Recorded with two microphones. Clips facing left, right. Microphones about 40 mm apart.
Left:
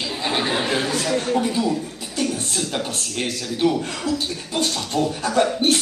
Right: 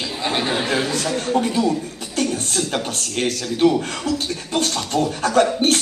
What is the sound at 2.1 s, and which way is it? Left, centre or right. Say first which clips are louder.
Speech: right 2 dB; right.